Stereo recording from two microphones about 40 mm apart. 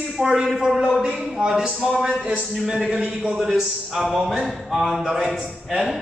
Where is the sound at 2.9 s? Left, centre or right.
Right.